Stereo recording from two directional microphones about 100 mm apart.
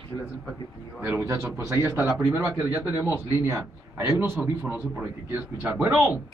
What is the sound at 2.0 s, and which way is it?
Speech, 5° right (ahead or behind).